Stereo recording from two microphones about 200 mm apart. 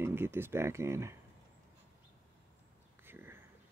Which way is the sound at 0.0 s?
10° right (ahead or behind).